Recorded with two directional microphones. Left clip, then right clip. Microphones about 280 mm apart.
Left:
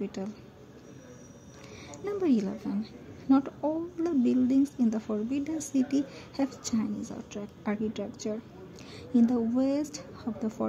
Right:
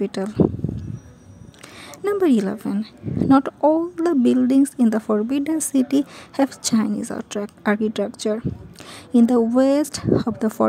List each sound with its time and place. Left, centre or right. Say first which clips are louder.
0.0 s a woman's voice: right 12 dB; right
2.0 s a woman's voice: right 10 dB; right
9.1 s a woman's voice: right 10 dB; right